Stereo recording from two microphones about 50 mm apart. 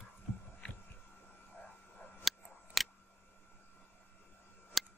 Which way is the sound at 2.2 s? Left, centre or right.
Centre.